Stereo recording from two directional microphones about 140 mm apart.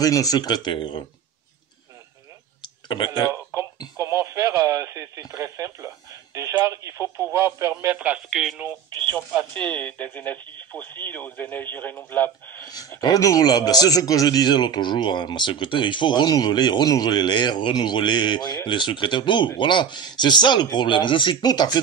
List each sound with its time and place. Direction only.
0.0 s speech: 25° left (ahead or behind)
3.5 s music: 20° right (ahead or behind)
4.0 s radio: 20° right (ahead or behind)
5.4 s speech: 20° right (ahead or behind)
8.3 s speech: centre (ahead or behind)
9.5 s speech: 10° left (ahead or behind)
13.0 s a man's voice: 25° left (ahead or behind)